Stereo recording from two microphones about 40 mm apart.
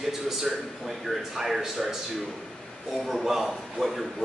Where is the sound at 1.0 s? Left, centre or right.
Centre.